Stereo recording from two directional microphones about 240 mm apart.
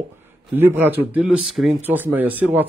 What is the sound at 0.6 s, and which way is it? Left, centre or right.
A man's voice, centre.